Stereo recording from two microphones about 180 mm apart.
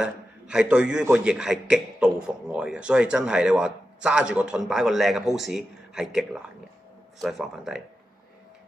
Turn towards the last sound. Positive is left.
turn(degrees=0)  # may be behind; listen again after turning